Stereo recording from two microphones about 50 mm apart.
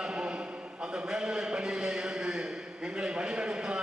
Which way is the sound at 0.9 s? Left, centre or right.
Centre.